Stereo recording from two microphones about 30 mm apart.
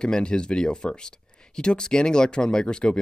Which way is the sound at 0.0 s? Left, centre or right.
Left.